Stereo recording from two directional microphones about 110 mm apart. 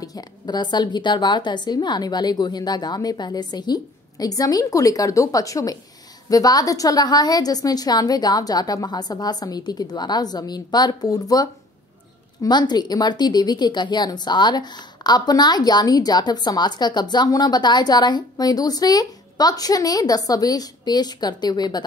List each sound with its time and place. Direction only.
0.0 s speech: 35° left (ahead or behind)